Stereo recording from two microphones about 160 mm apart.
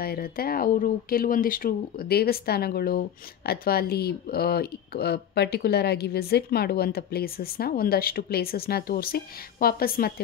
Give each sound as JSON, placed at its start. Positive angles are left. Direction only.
{"t": 0.0, "sound": "speech", "side_deg": 70}